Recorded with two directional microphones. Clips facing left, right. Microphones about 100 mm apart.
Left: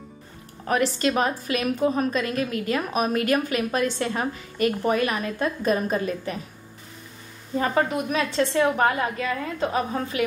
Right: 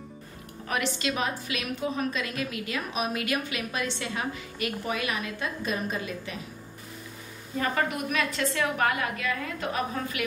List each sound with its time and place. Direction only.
0.7 s a woman's voice: 40° left (ahead or behind)
7.5 s a woman's voice: 30° left (ahead or behind)